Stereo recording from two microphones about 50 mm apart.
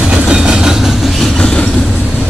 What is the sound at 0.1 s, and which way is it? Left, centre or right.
Train, centre.